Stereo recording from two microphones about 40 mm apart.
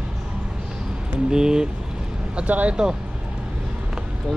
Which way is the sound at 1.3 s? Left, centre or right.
Centre.